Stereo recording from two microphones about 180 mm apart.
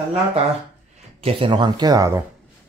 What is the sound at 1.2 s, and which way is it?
Speech, 30° right (ahead or behind).